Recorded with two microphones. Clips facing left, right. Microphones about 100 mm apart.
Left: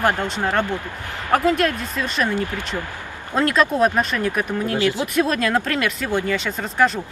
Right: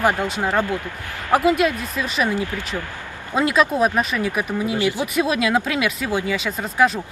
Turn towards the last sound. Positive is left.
turn(degrees=-5)  # may be behind; listen again after turning